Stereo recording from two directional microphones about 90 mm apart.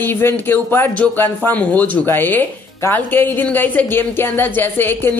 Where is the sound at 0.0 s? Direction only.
25° left (ahead or behind).